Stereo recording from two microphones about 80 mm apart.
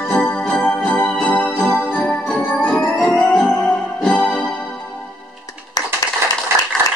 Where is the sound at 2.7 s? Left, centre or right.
Left.